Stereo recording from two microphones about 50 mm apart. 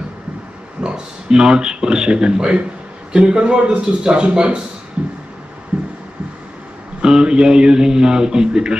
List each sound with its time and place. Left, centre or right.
0.7 s a man's voice: centre
7.0 s a man's voice: centre